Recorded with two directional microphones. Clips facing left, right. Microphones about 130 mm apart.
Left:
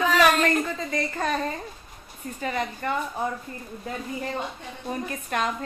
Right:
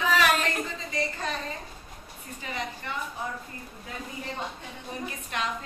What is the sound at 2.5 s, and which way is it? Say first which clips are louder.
Speech: left 6 dB; 50° left (ahead or behind).